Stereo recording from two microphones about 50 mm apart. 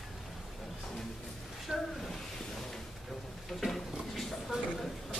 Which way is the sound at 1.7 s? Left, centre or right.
Centre.